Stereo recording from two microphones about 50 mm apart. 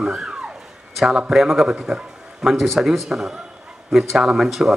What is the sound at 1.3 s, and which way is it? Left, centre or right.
A man's voice, centre.